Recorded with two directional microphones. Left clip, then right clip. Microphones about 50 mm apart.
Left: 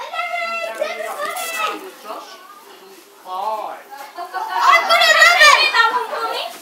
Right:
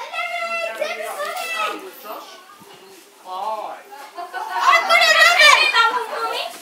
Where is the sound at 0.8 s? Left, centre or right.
Right.